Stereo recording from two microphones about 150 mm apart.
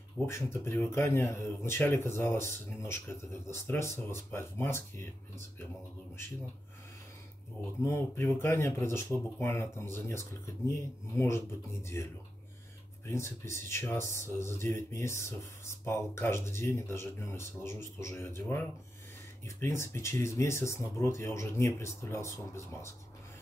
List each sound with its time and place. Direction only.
0.2 s speech: 5° left (ahead or behind)
0.5 s speech: 15° left (ahead or behind)
7.8 s speech: 15° left (ahead or behind)